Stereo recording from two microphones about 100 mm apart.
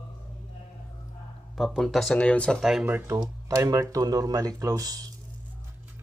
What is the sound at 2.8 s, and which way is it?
Speech, 25° right (ahead or behind).